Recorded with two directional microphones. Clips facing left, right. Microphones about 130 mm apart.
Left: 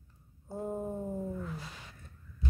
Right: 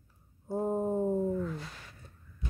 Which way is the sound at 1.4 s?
5° left (ahead or behind).